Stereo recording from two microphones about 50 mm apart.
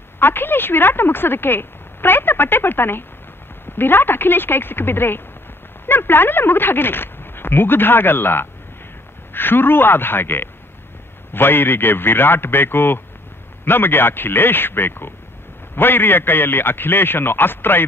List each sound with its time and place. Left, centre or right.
0.2 s speech: left